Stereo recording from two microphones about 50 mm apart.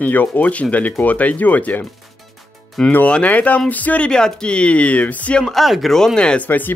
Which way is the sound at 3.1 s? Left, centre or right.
Left.